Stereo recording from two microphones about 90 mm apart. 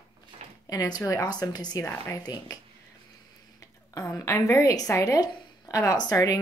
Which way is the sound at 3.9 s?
30° left (ahead or behind).